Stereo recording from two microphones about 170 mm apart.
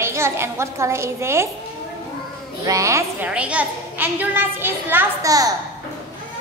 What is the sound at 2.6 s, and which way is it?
A woman's voice, 20° right (ahead or behind).